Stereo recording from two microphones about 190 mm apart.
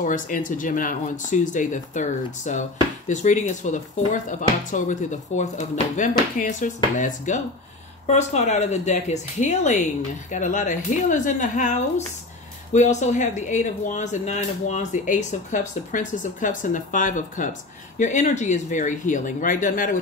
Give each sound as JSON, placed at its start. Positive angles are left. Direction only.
{"t": 0.0, "sound": "speech", "side_deg": 45}